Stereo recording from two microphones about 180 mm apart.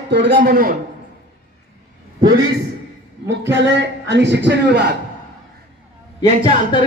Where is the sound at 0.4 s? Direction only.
50° right (ahead or behind).